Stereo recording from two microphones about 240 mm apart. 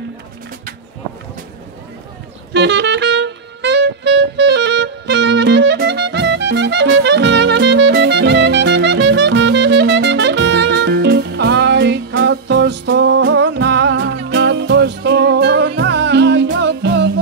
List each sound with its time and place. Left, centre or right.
2.5 s saxophone: right